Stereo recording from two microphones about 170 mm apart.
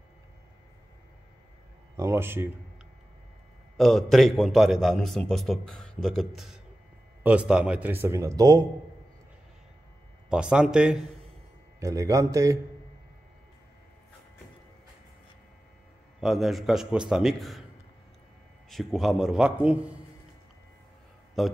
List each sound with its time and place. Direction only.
2.0 s speech: 15° right (ahead or behind)
3.7 s a man's voice: centre (ahead or behind); by 8.5 s 20° right (ahead or behind)
10.3 s a man's voice: 5° right (ahead or behind)
11.8 s a man's voice: 20° right (ahead or behind)
16.2 s a man's voice: centre (ahead or behind)
18.7 s a man's voice: centre (ahead or behind)
21.4 s a man's voice: centre (ahead or behind)